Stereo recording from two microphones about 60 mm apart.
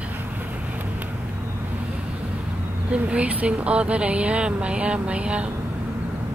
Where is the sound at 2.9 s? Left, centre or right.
Centre.